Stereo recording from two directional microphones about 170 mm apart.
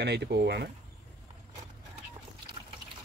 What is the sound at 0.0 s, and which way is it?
Speech, 80° right.